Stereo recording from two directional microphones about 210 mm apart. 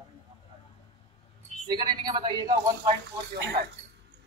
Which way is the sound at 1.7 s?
20° right (ahead or behind).